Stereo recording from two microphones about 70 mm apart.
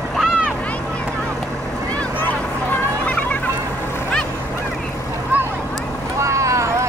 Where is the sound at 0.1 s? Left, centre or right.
Centre.